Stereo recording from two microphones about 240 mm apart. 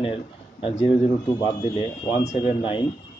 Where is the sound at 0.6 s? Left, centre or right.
Left.